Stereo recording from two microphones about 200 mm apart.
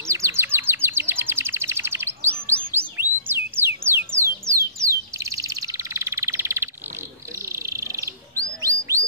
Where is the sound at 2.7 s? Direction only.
10° right (ahead or behind).